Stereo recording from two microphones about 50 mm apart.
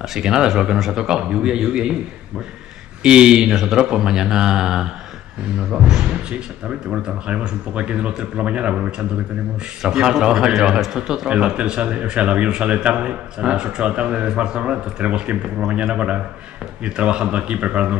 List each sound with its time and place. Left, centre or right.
0.0 s speech: centre
3.0 s speech: centre
6.0 s speech: right
9.8 s speech: centre